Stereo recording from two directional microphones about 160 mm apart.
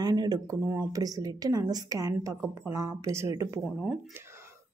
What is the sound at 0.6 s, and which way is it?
A woman's voice, 15° right (ahead or behind).